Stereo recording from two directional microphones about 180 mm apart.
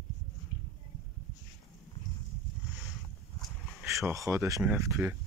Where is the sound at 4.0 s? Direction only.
15° right (ahead or behind).